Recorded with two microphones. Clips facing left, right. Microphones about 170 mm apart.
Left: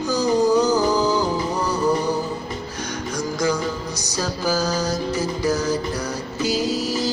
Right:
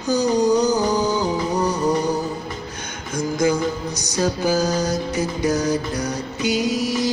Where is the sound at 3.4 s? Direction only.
20° right (ahead or behind).